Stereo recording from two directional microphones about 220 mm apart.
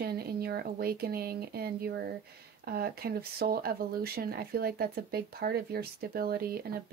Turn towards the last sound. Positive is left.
turn(degrees=-45)  # may be behind; listen again after turning